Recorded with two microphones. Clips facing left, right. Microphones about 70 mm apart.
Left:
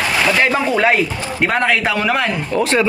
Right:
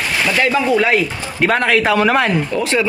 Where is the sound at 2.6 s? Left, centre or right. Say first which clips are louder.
Left 5 dB; left.